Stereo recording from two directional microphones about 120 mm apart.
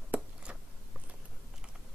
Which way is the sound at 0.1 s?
15° right (ahead or behind).